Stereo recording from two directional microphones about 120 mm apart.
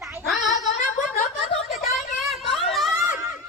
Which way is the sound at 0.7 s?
90° left.